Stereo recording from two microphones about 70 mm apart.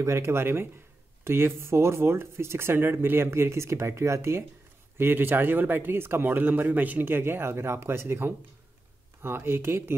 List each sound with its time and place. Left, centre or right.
0.0 s speech: right